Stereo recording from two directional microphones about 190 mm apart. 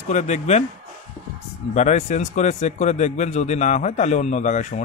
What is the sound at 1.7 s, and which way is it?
A man's voice, 40° left (ahead or behind).